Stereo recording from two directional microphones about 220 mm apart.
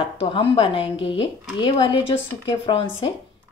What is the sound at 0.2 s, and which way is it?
A woman's voice, 25° left (ahead or behind).